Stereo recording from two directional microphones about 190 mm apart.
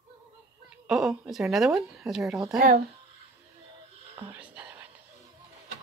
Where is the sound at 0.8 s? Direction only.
Centre (ahead or behind).